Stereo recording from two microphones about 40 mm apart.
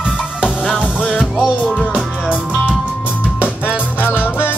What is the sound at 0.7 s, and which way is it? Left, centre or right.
Music, left.